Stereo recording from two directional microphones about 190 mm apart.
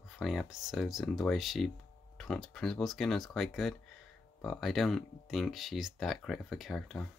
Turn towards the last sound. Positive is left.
turn(degrees=0)  # may be behind; listen again after turning